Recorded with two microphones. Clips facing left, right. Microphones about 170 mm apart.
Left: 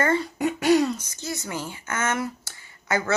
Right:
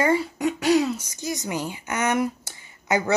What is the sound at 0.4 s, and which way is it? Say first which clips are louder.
Speech: left 3 dB; centre (ahead or behind).